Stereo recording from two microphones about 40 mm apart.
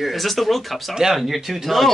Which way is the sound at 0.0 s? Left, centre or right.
Centre.